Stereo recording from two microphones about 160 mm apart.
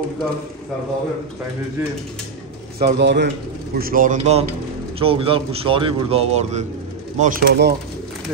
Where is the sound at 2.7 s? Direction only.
80° right.